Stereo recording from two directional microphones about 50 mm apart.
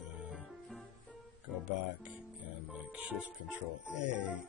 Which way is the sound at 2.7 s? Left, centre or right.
Right.